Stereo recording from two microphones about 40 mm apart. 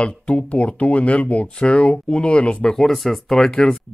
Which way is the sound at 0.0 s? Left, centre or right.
Left.